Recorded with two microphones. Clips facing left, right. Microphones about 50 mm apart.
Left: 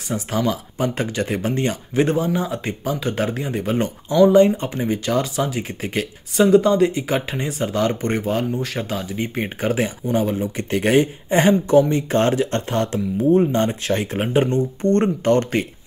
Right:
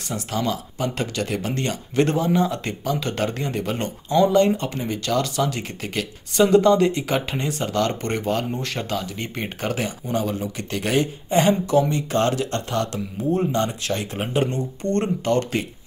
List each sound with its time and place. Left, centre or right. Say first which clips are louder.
0.1 s speech: left 3 dB; left
2.0 s speech: even; centre
6.3 s speech: left 1 dB; centre; by 15.6 s left